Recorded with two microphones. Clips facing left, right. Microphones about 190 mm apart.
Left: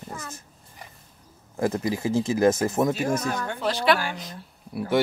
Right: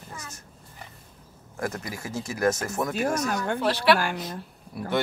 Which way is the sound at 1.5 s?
25° left (ahead or behind).